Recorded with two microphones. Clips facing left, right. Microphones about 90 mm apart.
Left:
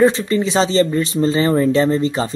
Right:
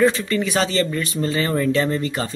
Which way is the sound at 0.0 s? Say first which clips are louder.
Left 4 dB; 25° left (ahead or behind).